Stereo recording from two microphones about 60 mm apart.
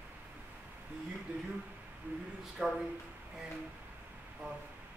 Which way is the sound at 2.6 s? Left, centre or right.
Right.